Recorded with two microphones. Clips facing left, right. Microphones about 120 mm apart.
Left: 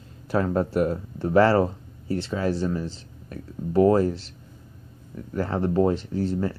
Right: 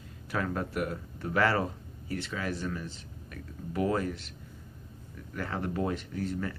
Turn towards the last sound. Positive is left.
turn(degrees=30)  # may be behind; listen again after turning